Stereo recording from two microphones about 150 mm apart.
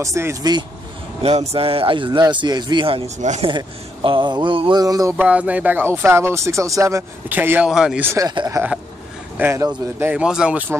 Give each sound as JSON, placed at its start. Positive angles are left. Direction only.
{"t": 0.0, "sound": "speech", "side_deg": -20}
{"t": 1.5, "sound": "speech", "side_deg": -40}
{"t": 3.2, "sound": "speech", "side_deg": -55}
{"t": 3.4, "sound": "speech", "side_deg": -35}
{"t": 5.1, "sound": "speech", "side_deg": -10}
{"t": 8.6, "sound": "speech", "side_deg": -20}